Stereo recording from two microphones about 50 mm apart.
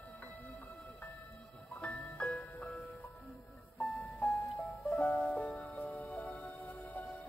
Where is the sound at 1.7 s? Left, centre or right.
Centre.